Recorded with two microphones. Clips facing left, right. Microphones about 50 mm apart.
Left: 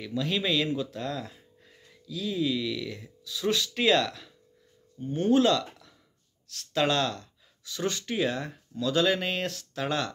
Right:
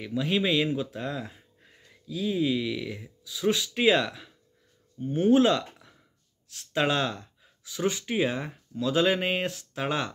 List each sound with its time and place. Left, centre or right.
0.0 s speech: centre